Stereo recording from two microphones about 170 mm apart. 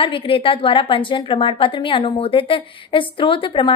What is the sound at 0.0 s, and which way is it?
A woman's voice, 30° left (ahead or behind).